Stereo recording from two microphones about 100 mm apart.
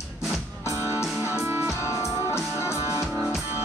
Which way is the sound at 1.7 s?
30° left (ahead or behind).